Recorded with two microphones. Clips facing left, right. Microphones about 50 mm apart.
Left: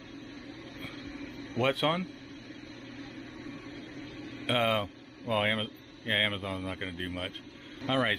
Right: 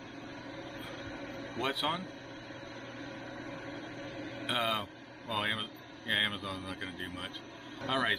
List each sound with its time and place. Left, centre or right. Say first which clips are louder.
1.6 s speech: left 6 dB; left
4.5 s a man's voice: left 5 dB; left